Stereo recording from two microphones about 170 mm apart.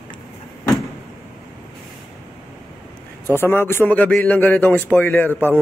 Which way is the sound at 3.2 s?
15° left (ahead or behind).